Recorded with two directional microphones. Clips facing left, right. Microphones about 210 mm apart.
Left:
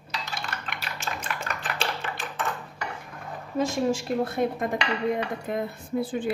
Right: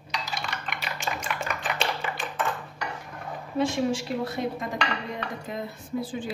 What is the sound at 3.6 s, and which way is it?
A woman's voice, 45° left (ahead or behind).